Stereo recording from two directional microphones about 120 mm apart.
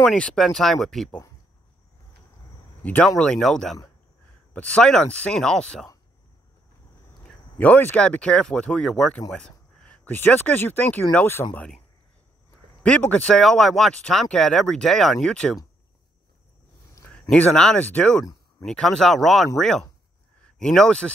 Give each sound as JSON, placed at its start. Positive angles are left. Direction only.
{"t": 0.1, "sound": "speech", "side_deg": 5}
{"t": 2.8, "sound": "speech", "side_deg": 10}
{"t": 7.2, "sound": "speech", "side_deg": 15}
{"t": 11.4, "sound": "speech", "side_deg": 25}
{"t": 12.8, "sound": "speech", "side_deg": 10}
{"t": 17.1, "sound": "speech", "side_deg": 5}